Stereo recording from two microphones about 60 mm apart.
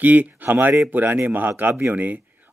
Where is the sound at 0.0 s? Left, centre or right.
Right.